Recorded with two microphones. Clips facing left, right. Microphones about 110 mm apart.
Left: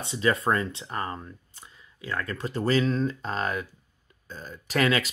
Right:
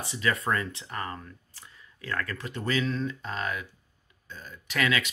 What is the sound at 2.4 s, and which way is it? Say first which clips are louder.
Speech: left 8 dB; 35° left (ahead or behind).